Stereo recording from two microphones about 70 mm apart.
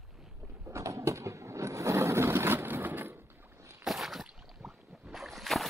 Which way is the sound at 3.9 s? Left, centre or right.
Centre.